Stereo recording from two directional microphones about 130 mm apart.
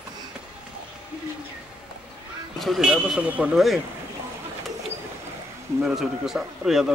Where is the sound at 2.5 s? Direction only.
Centre (ahead or behind).